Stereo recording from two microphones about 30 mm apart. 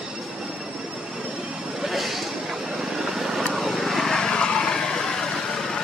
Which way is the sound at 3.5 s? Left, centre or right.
Centre.